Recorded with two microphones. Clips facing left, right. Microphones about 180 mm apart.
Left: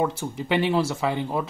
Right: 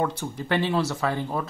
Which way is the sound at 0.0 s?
10° left (ahead or behind).